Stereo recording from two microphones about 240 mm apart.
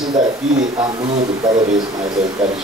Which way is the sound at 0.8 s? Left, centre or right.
Right.